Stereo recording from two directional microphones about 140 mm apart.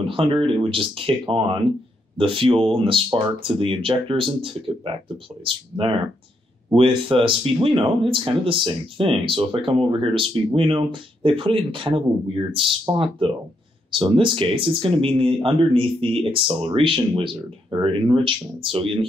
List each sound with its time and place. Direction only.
0.0 s speech: 40° right (ahead or behind)